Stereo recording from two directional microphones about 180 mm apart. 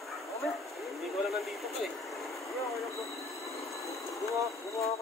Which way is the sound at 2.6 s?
Centre (ahead or behind).